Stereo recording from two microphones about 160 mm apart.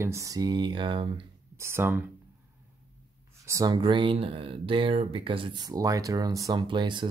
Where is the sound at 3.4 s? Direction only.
20° right (ahead or behind).